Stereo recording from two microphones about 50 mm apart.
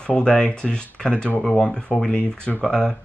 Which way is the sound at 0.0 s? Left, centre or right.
Centre.